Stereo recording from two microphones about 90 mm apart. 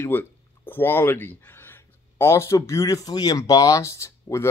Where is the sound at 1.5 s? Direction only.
25° left (ahead or behind).